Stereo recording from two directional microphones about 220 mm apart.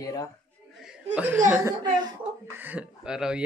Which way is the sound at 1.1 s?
10° right (ahead or behind).